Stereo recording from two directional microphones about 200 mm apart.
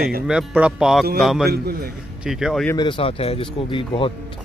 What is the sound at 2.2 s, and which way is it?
Speech, centre (ahead or behind).